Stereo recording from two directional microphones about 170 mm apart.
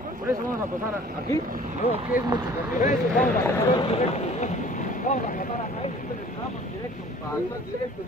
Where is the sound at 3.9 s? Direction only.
40° left (ahead or behind).